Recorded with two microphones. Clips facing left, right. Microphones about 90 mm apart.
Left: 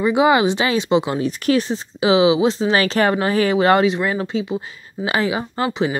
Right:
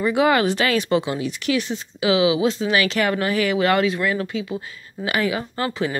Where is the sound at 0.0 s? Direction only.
20° left (ahead or behind).